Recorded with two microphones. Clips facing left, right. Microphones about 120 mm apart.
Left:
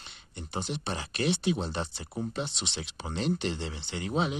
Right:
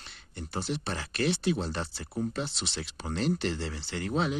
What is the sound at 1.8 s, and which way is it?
Speech, 20° left (ahead or behind).